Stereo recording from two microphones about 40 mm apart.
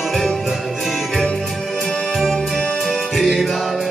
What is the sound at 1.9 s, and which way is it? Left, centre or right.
Music, left.